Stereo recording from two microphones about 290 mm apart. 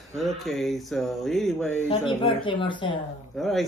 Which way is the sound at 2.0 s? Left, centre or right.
Centre.